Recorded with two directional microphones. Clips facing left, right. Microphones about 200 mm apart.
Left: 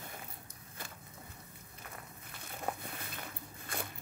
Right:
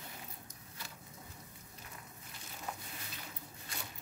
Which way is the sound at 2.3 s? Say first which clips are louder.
Left 6 dB; 55° left (ahead or behind).